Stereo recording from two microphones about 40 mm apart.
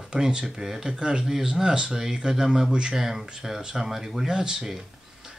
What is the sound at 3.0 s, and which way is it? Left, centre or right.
Speech, centre.